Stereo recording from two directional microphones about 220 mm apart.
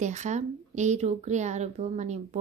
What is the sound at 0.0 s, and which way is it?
Speech, 35° right (ahead or behind).